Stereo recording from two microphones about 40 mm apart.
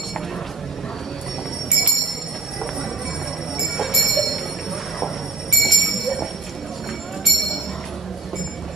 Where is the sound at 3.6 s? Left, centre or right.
Centre.